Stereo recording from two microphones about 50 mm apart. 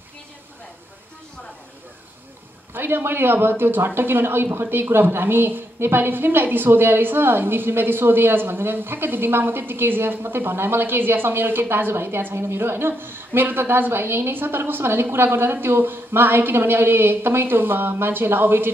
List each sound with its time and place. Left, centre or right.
2.7 s speech: right